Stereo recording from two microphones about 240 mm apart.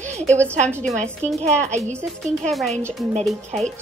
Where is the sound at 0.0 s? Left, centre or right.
Right.